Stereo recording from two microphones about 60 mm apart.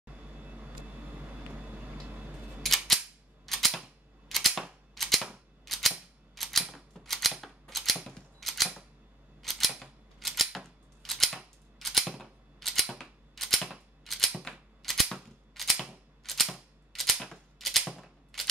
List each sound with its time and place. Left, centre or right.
0.0 s vehicle: right
2.6 s cap gun: centre
3.4 s a sound: centre
4.3 s camera: centre
4.9 s typewriter: centre
8.1 s a sound: centre
11.0 s scissors: centre
12.1 s typewriter: centre
14.8 s a sound: centre
15.5 s camera: centre
16.2 s cap gun: centre
16.9 s typewriter: centre
18.3 s shuffling cards: centre